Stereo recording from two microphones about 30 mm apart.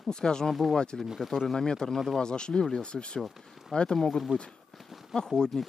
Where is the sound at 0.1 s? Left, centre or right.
Left.